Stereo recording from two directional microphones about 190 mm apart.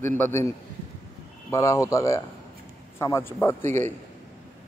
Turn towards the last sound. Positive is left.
turn(degrees=15)  # may be behind; listen again after turning